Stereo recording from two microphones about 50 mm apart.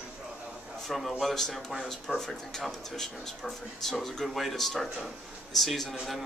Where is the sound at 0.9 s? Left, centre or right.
Centre.